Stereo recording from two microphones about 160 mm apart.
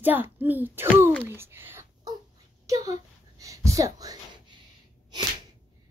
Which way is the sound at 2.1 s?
25° right (ahead or behind).